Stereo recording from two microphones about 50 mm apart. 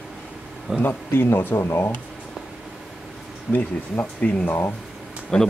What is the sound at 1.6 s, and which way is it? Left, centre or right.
Speech, left.